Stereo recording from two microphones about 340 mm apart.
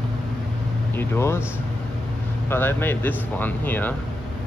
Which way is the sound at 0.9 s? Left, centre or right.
Centre.